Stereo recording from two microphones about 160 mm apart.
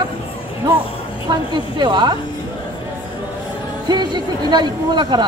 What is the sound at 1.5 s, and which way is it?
Speech, 25° right (ahead or behind).